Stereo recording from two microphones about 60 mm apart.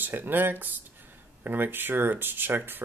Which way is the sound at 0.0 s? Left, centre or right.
Right.